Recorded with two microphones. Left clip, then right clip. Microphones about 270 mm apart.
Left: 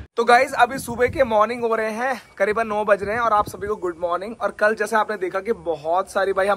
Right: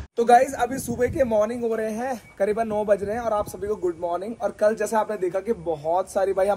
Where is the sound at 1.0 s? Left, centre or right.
Left.